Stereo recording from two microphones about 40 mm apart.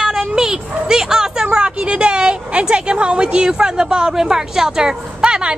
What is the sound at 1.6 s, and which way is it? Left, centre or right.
A woman's voice, right.